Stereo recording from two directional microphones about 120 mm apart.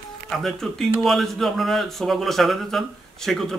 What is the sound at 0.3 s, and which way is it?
A man's voice, centre (ahead or behind).